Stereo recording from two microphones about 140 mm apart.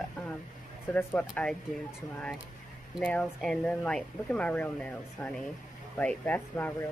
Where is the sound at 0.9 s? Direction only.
10° left (ahead or behind).